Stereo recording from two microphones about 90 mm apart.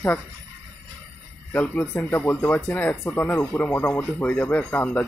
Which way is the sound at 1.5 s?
15° left (ahead or behind).